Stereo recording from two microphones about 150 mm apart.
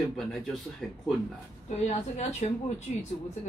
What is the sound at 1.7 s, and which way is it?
Speech, 50° left (ahead or behind).